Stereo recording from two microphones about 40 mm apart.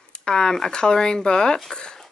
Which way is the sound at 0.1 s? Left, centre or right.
Centre.